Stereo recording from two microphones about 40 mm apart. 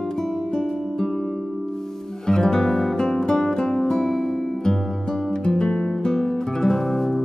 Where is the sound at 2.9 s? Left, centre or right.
Centre.